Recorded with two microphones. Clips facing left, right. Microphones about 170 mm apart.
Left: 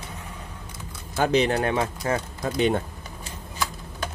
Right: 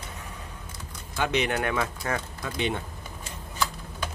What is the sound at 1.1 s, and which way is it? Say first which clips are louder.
Speech: left 5 dB; 35° left (ahead or behind).